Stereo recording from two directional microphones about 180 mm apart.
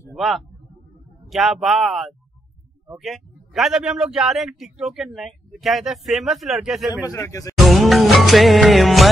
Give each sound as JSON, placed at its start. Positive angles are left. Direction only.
{"t": 0.1, "sound": "a man's voice", "side_deg": 0}
{"t": 7.1, "sound": "speech", "side_deg": 15}
{"t": 7.5, "sound": "music", "side_deg": 0}